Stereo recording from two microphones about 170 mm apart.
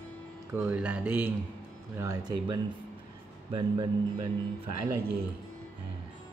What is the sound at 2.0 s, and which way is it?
Speech, 20° right (ahead or behind).